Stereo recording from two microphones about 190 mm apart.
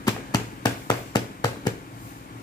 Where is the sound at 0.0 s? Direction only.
20° left (ahead or behind).